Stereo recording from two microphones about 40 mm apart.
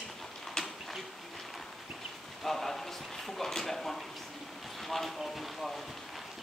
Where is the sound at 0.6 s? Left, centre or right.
Centre.